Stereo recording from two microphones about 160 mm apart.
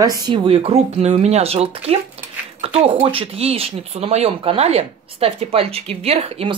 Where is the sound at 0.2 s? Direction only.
35° right (ahead or behind).